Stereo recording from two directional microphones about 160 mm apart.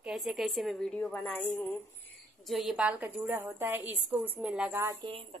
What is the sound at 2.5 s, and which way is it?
Speech, centre (ahead or behind).